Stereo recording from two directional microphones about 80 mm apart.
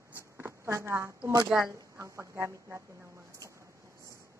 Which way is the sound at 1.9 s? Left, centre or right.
Right.